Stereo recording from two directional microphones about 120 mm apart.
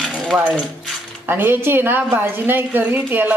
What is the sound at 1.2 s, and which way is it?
Speech, 15° right (ahead or behind).